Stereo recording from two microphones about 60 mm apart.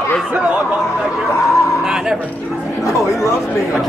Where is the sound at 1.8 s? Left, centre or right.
Centre.